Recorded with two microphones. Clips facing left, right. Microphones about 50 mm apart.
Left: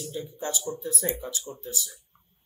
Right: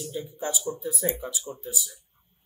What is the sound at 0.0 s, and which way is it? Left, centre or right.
Speech, centre.